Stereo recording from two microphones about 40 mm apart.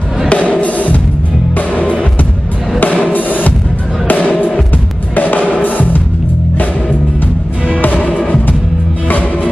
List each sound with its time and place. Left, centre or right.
0.3 s music: left
2.8 s drum: left
4.1 s music: left
7.6 s music: left